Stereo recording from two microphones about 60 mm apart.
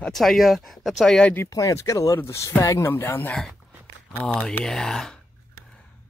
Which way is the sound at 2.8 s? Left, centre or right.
Left.